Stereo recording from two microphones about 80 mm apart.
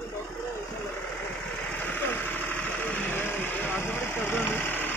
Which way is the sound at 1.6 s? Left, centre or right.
Centre.